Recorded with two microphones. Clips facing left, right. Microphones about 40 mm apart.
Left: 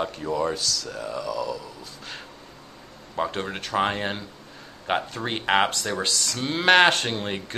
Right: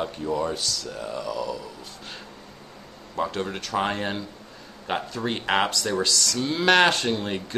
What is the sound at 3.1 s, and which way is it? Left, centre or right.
Speech, centre.